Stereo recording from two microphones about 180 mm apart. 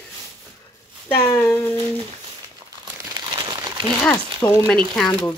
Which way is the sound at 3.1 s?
20° right (ahead or behind).